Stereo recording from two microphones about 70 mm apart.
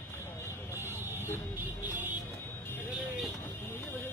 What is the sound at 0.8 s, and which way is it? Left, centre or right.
Vehicle, right.